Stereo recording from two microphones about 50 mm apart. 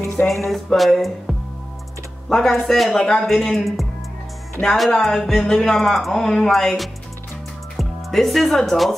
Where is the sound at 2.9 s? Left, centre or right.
Centre.